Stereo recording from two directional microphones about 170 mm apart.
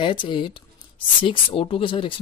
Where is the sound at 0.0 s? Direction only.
30° left (ahead or behind).